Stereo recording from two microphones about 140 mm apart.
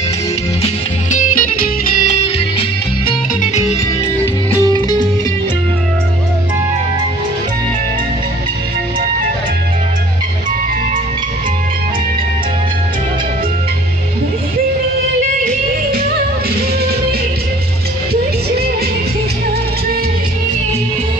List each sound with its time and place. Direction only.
1.1 s music: 70° left (ahead or behind)